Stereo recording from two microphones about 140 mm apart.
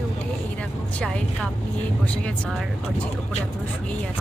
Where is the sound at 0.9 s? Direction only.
5° left (ahead or behind).